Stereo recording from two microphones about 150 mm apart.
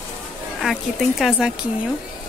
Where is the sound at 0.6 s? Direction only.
Centre (ahead or behind).